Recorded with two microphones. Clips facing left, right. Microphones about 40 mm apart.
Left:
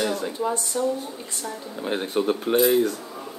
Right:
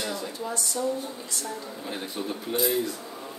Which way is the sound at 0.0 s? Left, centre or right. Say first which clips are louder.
Left 7 dB; left.